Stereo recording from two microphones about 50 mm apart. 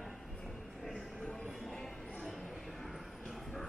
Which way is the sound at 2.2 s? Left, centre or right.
Centre.